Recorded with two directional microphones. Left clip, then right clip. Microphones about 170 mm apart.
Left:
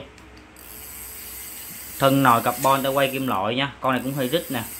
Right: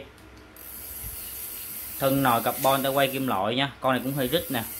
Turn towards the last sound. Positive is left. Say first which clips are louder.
# left 2 dB
turn(degrees=0)  # may be behind; listen again after turning